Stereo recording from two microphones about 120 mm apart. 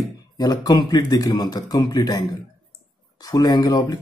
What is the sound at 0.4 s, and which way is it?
Speech, 35° left (ahead or behind).